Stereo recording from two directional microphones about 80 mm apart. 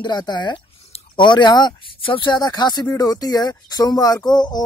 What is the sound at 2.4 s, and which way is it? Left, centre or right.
Speech, left.